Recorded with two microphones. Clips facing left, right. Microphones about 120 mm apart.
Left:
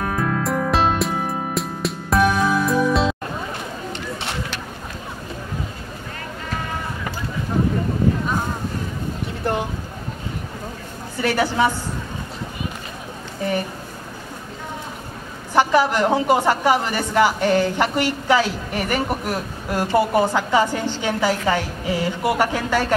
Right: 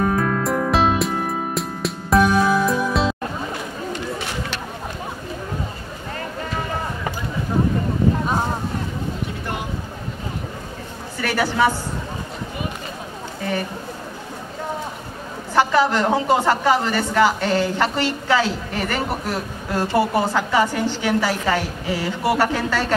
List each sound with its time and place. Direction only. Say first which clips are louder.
0.0 s music: right 3 dB; centre (ahead or behind)
11.1 s a sound: left 2 dB; 20° left (ahead or behind)
15.9 s a woman's voice: left 1 dB; 15° left (ahead or behind)